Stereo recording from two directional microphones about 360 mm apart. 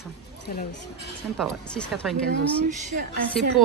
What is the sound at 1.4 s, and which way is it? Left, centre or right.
Speech, centre.